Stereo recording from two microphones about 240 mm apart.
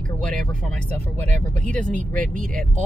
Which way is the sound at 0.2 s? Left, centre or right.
Centre.